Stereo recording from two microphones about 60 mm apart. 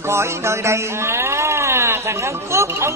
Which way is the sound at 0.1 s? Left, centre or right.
Right.